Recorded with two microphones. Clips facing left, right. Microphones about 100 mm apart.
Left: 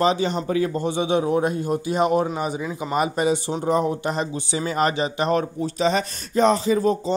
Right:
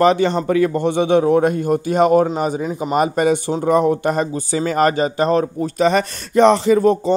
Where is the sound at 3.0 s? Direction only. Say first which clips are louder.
Right 5 dB; 50° right (ahead or behind).